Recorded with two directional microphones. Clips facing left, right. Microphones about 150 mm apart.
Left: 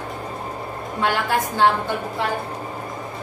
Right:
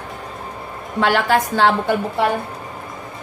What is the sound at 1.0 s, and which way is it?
Speech, 90° right.